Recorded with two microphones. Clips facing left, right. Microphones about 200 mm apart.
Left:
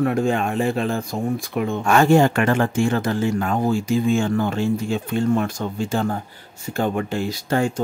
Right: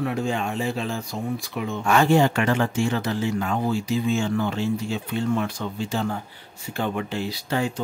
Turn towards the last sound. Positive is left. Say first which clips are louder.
# left 4 dB
turn(degrees=50)  # may be behind; listen again after turning